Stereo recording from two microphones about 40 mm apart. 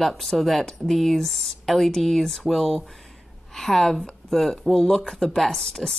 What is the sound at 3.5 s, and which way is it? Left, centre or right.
A woman's voice, centre.